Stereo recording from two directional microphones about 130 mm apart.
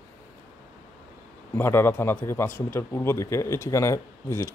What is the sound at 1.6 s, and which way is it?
Speech, 15° left (ahead or behind).